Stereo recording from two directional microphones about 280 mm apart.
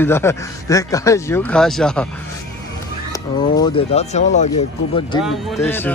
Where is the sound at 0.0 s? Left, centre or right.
Centre.